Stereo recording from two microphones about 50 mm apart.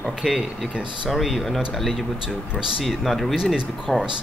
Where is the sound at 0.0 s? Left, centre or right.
Centre.